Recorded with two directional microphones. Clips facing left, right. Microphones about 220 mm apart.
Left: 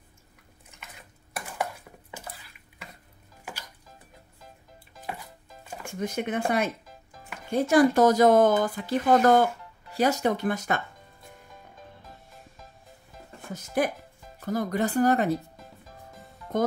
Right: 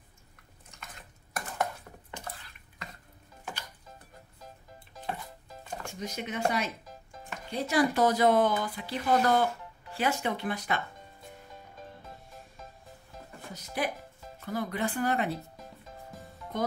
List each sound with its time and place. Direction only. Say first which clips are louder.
1.3 s a sound: even; 5° left (ahead or behind)
5.9 s speech: left 8 dB; 55° left (ahead or behind)
13.5 s speech: left 6 dB; 50° left (ahead or behind)
16.5 s speech: left 6 dB; 45° left (ahead or behind)